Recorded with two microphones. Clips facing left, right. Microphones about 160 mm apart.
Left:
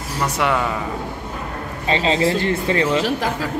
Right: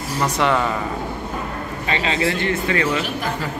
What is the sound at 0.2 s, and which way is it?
Speech, 5° left (ahead or behind).